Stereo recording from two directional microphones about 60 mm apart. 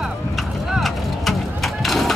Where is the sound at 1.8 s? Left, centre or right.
Centre.